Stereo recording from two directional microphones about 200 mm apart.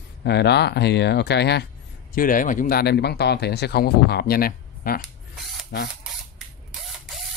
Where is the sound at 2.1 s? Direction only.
45° left (ahead or behind).